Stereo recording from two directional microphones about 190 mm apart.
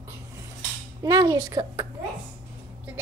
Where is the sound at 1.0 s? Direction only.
20° right (ahead or behind).